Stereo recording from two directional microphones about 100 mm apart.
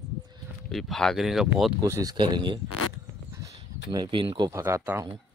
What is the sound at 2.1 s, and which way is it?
Speech, 50° right (ahead or behind).